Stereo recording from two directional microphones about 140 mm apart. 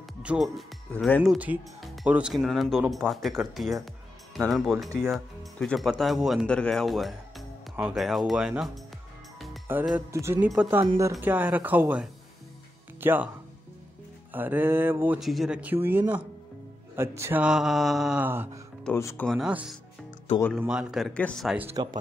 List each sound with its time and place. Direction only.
0.2 s speech: 5° right (ahead or behind)
0.9 s speech: 10° left (ahead or behind)
1.2 s speech: 5° right (ahead or behind)
4.8 s speech: 20° right (ahead or behind)
5.1 s speech: centre (ahead or behind)
9.9 s speech: 20° right (ahead or behind)
14.3 s speech: 15° right (ahead or behind)
15.1 s speech: centre (ahead or behind); by 17.4 s 20° right (ahead or behind)
17.4 s speech: 5° right (ahead or behind)
18.9 s speech: 20° left (ahead or behind)
19.2 s speech: 5° right (ahead or behind)
21.1 s speech: 10° left (ahead or behind)
21.8 s speech: 30° right (ahead or behind)